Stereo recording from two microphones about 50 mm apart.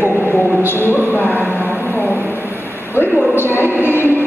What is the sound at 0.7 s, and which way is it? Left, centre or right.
Speech, left.